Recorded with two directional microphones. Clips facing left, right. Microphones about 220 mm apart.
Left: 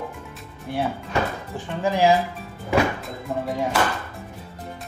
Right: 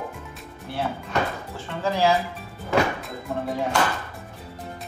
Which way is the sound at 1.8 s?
15° left (ahead or behind).